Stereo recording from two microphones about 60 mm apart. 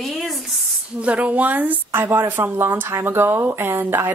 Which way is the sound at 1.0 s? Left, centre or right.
Right.